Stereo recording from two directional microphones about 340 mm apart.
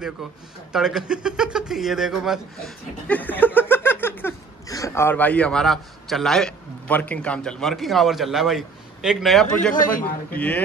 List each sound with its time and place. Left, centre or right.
0.7 s speech: centre
9.8 s a man's voice: left
10.3 s speech: centre